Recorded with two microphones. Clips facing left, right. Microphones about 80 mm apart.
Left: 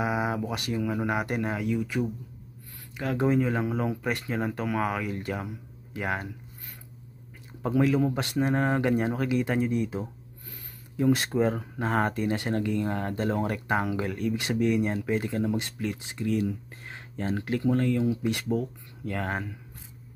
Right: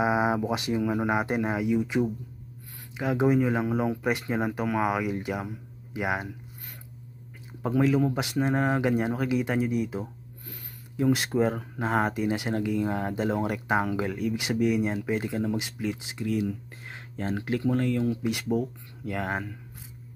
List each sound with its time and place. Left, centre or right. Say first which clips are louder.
0.0 s speech: right 4 dB; right
7.6 s speech: even; centre